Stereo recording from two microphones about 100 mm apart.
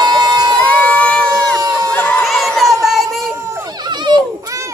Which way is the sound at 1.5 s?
30° right (ahead or behind).